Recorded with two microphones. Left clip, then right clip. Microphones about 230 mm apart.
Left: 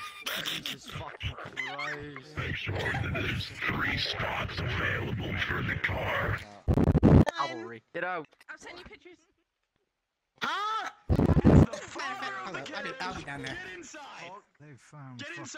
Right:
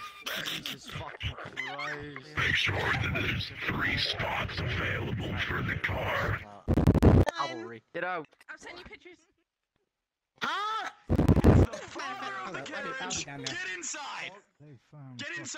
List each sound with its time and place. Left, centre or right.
0.0 s dog: centre
1.5 s speech: centre
2.3 s speech: right
3.1 s speech: centre
6.7 s a sound: centre
7.1 s speech: centre
10.4 s a sound: centre
12.5 s speech: centre
13.4 s speech: right
14.9 s speech: left
15.1 s speech: centre